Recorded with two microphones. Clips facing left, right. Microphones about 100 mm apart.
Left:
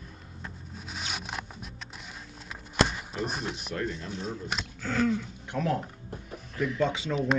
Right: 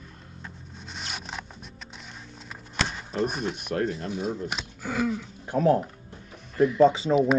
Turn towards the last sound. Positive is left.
turn(degrees=-10)  # may be behind; listen again after turning